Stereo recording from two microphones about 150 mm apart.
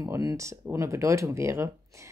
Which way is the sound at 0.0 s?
20° right (ahead or behind).